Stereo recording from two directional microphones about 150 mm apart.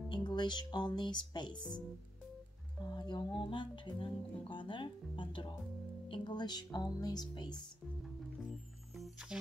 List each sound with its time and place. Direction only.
0.1 s music: 30° left (ahead or behind)
2.8 s music: 30° left (ahead or behind)
6.0 s speech: 30° left (ahead or behind)
8.0 s music: centre (ahead or behind)